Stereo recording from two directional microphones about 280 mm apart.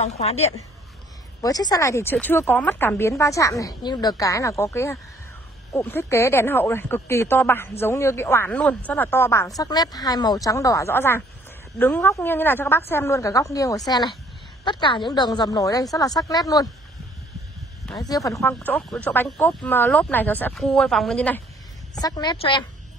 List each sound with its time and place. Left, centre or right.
0.0 s a woman's voice: left
17.9 s speech: centre
22.0 s speech: centre